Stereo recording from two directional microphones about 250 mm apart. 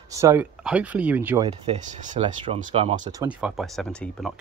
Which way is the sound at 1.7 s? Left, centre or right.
Right.